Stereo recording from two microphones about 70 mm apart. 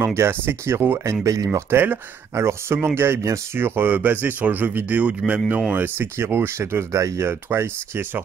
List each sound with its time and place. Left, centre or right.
0.0 s speech: right
1.2 s speech: right
1.7 s speech: right
2.3 s speech: right
6.9 s speech: right
7.2 s speech: right